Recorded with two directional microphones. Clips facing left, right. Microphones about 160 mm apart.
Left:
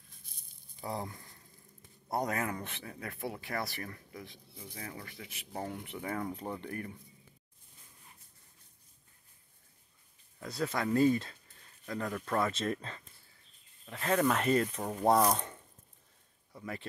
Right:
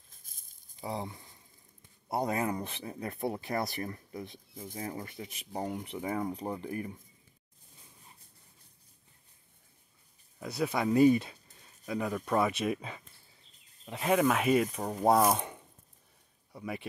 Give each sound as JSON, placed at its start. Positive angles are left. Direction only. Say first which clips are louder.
{"t": 0.2, "sound": "a sound", "louder": "left 4 dB", "side_deg": -45}
{"t": 1.1, "sound": "a sound", "louder": "even", "side_deg": -15}
{"t": 2.0, "sound": "speech", "louder": "right 3 dB", "side_deg": -25}
{"t": 3.3, "sound": "speech", "louder": "right 6 dB", "side_deg": -40}
{"t": 3.5, "sound": "speech", "louder": "right 4 dB", "side_deg": -20}
{"t": 4.6, "sound": "speech", "louder": "right 6 dB", "side_deg": -45}
{"t": 4.9, "sound": "speech", "louder": "right 6 dB", "side_deg": -25}
{"t": 10.4, "sound": "speech", "louder": "right 3 dB", "side_deg": -15}
{"t": 15.3, "sound": "a sound", "louder": "right 3 dB", "side_deg": -15}
{"t": 16.5, "sound": "speech", "louder": "right 3 dB", "side_deg": -15}